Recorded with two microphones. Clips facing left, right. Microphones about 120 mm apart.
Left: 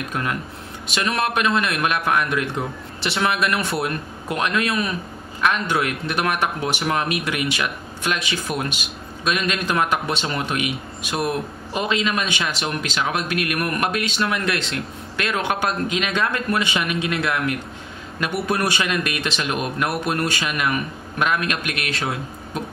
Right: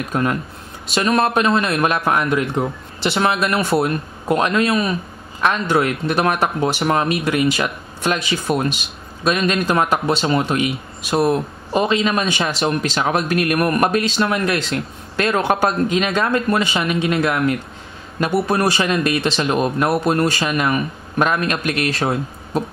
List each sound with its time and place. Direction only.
0.1 s a man's voice: 30° right (ahead or behind)